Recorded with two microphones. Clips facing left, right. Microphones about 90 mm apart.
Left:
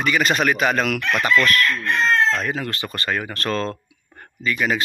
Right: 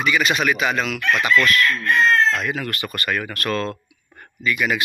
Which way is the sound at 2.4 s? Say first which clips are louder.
Even; 30° left (ahead or behind).